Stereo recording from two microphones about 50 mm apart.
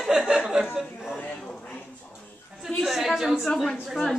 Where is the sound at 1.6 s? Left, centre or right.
Left.